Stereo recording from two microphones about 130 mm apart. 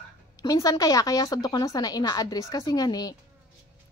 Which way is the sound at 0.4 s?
30° left (ahead or behind).